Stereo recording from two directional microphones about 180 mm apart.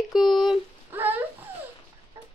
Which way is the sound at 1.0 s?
10° right (ahead or behind).